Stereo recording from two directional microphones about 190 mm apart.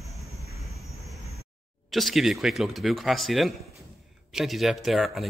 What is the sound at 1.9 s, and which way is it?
Speech, centre (ahead or behind).